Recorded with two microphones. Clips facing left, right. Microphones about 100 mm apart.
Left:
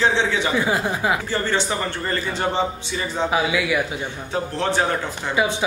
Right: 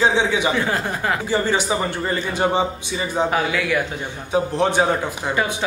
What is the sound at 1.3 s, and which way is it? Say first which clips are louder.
A man's voice: right 3 dB; 15° right (ahead or behind).